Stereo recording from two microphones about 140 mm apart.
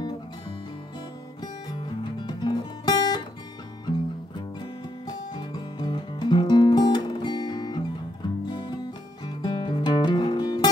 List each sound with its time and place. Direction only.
2.2 s music: 30° left (ahead or behind)
5.0 s music: 35° left (ahead or behind)